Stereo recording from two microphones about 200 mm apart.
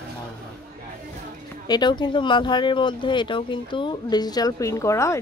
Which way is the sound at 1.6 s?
20° left (ahead or behind).